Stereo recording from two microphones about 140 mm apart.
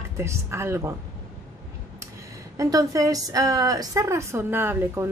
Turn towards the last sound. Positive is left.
turn(degrees=-15)  # may be behind; listen again after turning